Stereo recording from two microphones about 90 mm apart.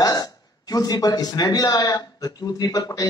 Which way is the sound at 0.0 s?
45° left (ahead or behind).